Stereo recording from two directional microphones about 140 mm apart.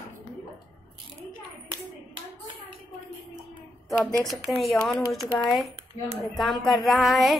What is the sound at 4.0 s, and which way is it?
Speech, centre (ahead or behind).